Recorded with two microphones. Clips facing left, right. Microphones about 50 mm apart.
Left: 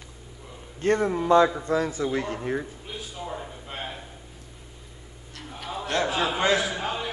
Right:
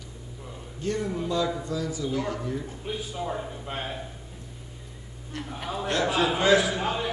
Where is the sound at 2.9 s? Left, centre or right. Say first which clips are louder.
Right 7 dB; centre.